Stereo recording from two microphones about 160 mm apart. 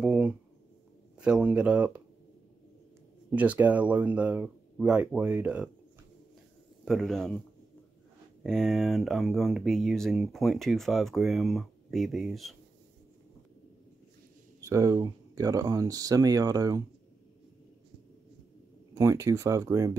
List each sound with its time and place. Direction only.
0.0 s a sound: 5° right (ahead or behind)
1.1 s speech: 5° right (ahead or behind)
3.3 s speech: 10° right (ahead or behind)
6.8 s a man's voice: centre (ahead or behind)
8.5 s speech: 5° left (ahead or behind)
14.6 s speech: 20° right (ahead or behind)
18.9 s speech: 20° right (ahead or behind)